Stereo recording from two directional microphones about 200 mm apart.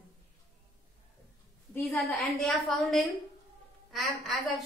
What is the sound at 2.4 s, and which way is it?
A woman's voice, centre (ahead or behind).